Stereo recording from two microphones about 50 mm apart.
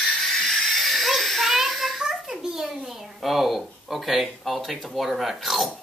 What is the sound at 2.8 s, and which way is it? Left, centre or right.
Speech, centre.